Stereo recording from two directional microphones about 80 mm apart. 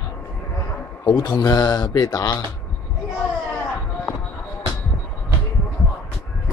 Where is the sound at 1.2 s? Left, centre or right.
Left.